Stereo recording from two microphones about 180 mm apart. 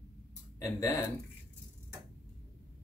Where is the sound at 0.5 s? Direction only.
15° left (ahead or behind).